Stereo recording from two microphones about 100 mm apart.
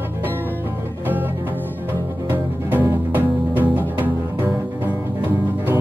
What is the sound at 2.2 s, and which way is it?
Music, 20° right (ahead or behind).